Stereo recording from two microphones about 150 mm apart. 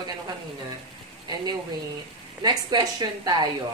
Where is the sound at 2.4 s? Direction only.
30° right (ahead or behind).